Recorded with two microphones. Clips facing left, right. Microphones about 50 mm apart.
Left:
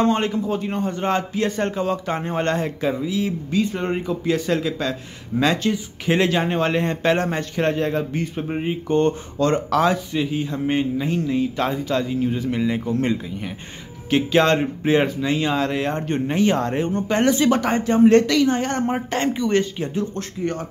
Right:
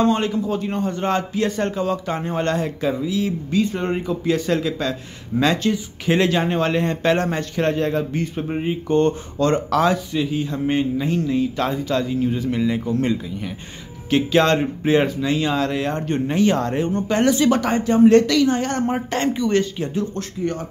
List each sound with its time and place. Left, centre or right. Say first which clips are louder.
0.0 s a man's voice: right 1 dB; left
0.6 s a man's voice: right 1 dB; centre
14.1 s speech: even; centre